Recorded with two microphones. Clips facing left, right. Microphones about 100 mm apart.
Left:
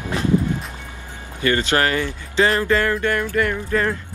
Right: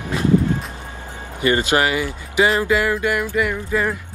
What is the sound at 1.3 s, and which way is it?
Speech, 15° right (ahead or behind).